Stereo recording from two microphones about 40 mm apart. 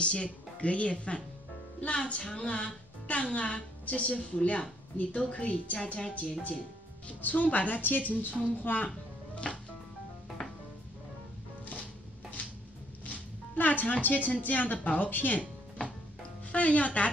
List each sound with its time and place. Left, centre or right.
0.0 s a woman's voice: left
7.2 s a woman's voice: left
8.6 s music: left
13.6 s a woman's voice: left
16.5 s a woman's voice: left